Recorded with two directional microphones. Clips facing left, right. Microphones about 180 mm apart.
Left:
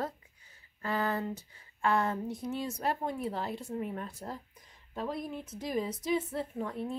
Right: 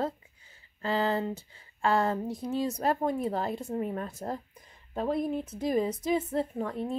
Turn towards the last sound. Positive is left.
turn(degrees=-35)  # may be behind; listen again after turning